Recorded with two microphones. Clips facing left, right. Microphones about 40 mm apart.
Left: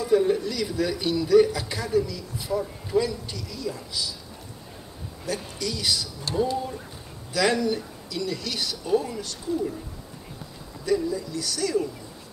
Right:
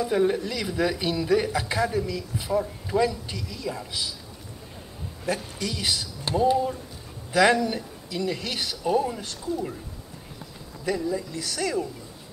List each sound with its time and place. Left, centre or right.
0.0 s a man's voice: right
5.6 s a man's voice: right
6.2 s a man's voice: right
10.9 s a man's voice: right